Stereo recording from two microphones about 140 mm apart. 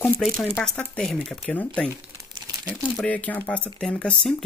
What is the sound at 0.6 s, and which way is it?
Speech, 5° left (ahead or behind).